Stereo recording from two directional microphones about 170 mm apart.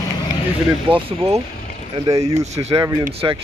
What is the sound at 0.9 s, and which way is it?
Speech, 35° right (ahead or behind).